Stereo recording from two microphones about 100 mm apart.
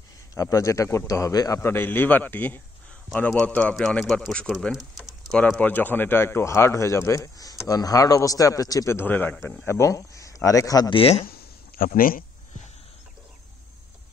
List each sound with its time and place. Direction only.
0.3 s a man's voice: 35° left (ahead or behind)
1.6 s speech: 20° left (ahead or behind)
3.7 s speech: 5° left (ahead or behind); by 8.9 s 35° left (ahead or behind)
8.9 s a man's voice: 20° left (ahead or behind)
10.9 s speech: 70° left (ahead or behind)